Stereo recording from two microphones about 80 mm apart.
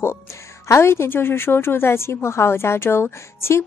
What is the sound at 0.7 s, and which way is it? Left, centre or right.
A woman's voice, left.